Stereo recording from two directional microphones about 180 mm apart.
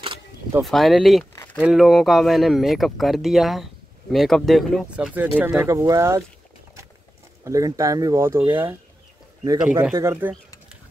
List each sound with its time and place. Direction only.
0.6 s speech: centre (ahead or behind)
1.3 s a sound: 15° left (ahead or behind)
1.6 s speech: centre (ahead or behind)
7.4 s speech: 20° right (ahead or behind)
9.6 s speech: 5° right (ahead or behind)